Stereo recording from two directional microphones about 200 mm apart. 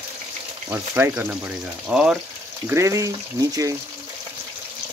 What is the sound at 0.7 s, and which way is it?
Speech, 10° right (ahead or behind).